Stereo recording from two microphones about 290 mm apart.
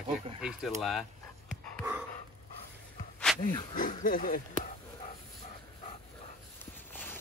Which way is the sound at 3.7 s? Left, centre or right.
Left.